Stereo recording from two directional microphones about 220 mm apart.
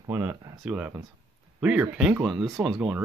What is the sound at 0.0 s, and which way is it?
Speech, 10° right (ahead or behind).